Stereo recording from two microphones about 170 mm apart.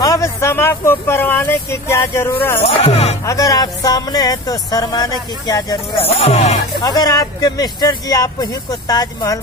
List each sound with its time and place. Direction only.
0.0 s speech: 20° left (ahead or behind)
2.6 s speech: 35° left (ahead or behind)
3.3 s speech: 20° left (ahead or behind)
6.1 s speech: 35° left (ahead or behind)
6.8 s speech: 20° left (ahead or behind)